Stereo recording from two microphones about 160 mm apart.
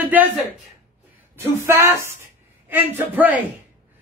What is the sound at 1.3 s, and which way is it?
Speech, 15° right (ahead or behind).